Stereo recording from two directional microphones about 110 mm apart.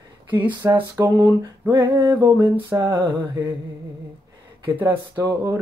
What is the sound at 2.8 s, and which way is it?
Speech, 40° right (ahead or behind).